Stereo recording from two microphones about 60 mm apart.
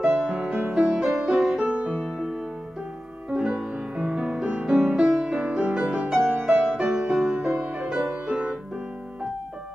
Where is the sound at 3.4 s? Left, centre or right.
Centre.